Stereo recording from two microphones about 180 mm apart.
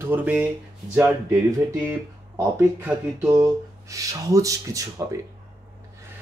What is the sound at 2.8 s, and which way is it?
Speech, 15° right (ahead or behind).